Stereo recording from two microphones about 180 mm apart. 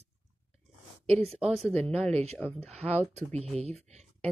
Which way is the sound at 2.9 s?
35° right (ahead or behind).